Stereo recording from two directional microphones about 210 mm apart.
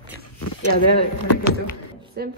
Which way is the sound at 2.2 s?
45° right (ahead or behind).